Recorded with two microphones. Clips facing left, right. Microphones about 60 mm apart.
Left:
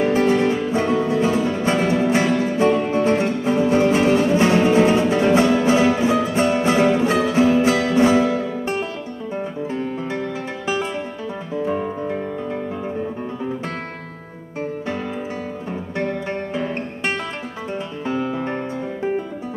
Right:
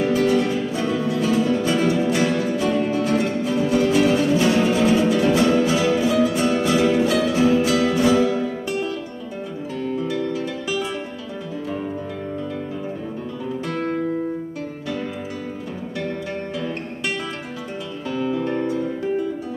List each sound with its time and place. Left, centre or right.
0.0 s music: left
9.8 s music: left
11.5 s guitar: left
18.0 s music: left